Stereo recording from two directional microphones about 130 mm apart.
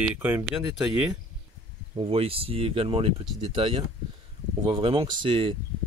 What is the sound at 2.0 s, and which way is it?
Speech, 45° right (ahead or behind).